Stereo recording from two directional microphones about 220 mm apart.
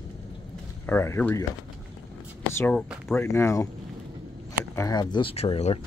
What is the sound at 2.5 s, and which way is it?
Speech, 5° left (ahead or behind).